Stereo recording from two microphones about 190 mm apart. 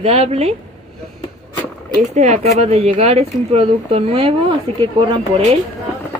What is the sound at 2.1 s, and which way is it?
A woman's voice, 35° right (ahead or behind).